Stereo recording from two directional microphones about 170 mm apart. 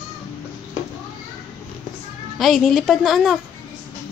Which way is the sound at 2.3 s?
Centre (ahead or behind).